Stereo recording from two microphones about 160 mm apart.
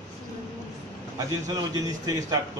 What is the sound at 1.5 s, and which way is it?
Speech, 20° right (ahead or behind).